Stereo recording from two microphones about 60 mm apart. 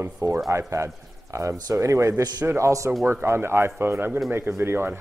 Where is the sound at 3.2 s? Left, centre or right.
Right.